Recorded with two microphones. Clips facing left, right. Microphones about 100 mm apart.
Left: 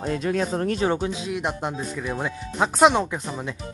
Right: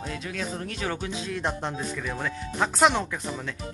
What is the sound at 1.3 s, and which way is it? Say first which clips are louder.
Speech: left 3 dB; 10° left (ahead or behind).